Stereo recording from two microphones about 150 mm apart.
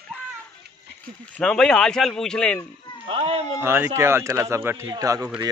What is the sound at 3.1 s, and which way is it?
Speech, 40° right (ahead or behind).